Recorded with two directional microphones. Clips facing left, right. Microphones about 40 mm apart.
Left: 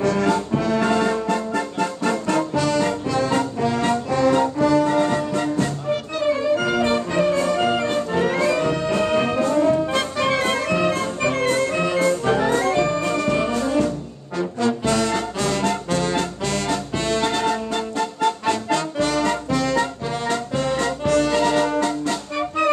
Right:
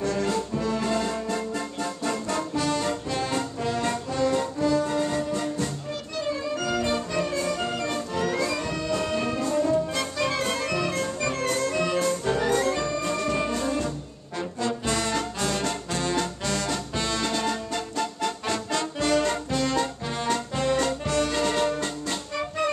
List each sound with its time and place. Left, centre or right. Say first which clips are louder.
0.0 s music: left 6 dB; left
14.6 s music: left 7 dB; left